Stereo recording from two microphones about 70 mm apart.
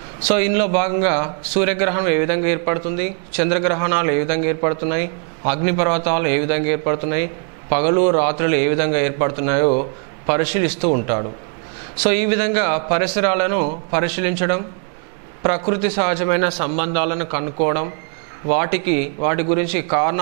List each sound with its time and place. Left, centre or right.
0.3 s speech: centre